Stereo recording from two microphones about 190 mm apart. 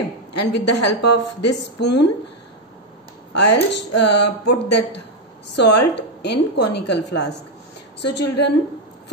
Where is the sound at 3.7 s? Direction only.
65° left (ahead or behind).